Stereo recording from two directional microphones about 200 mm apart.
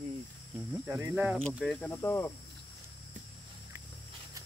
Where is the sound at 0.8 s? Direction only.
10° right (ahead or behind).